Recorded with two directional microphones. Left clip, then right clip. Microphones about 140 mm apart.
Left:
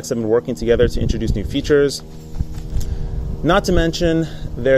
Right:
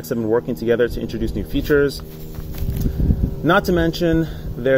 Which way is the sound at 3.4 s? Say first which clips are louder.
Left 1 dB; 20° left (ahead or behind).